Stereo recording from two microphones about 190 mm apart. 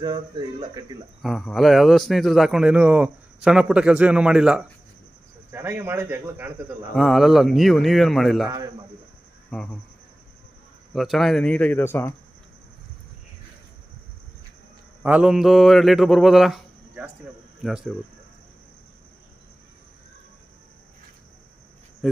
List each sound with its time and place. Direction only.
0.0 s speech: 20° right (ahead or behind)
1.2 s a man's voice: centre (ahead or behind)
7.0 s a man's voice: centre (ahead or behind)
9.5 s speech: 5° left (ahead or behind)
11.0 s speech: centre (ahead or behind)
15.0 s a man's voice: 5° right (ahead or behind)
22.0 s speech: centre (ahead or behind)